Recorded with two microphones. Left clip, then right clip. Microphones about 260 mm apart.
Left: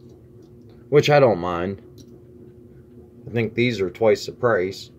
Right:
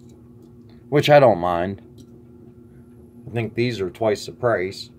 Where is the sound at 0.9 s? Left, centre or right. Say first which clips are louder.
Right 2 dB; centre.